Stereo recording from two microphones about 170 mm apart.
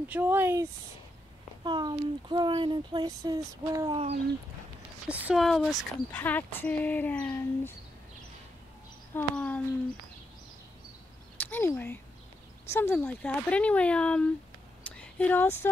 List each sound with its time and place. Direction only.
0.1 s speech: 10° right (ahead or behind)
1.6 s speech: 25° right (ahead or behind)
3.9 s speech: 35° right (ahead or behind)
5.0 s speech: 5° right (ahead or behind)
6.1 s speech: 10° left (ahead or behind)
9.1 s speech: 5° left (ahead or behind)
11.3 s speech: 10° left (ahead or behind)
14.8 s a sound: 10° left (ahead or behind)